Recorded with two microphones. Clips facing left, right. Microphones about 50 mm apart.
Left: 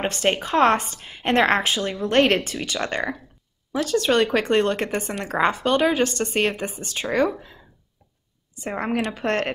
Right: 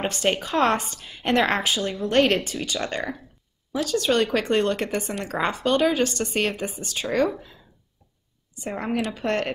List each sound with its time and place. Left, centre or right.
0.1 s speech: left
8.6 s speech: left